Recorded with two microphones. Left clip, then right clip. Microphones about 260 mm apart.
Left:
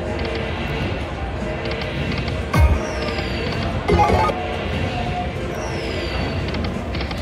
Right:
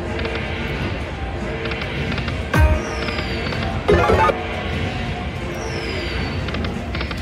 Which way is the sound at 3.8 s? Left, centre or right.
Right.